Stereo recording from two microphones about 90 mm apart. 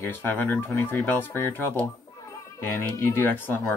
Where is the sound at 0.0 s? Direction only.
20° left (ahead or behind).